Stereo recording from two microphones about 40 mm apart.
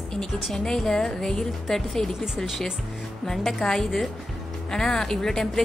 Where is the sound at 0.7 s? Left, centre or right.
Centre.